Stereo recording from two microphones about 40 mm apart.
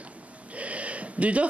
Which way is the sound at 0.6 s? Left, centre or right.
Right.